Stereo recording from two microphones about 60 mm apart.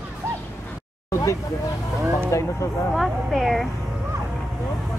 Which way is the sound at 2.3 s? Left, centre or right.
Left.